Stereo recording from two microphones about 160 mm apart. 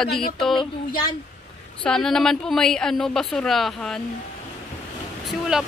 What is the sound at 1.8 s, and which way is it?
Speech, 5° left (ahead or behind).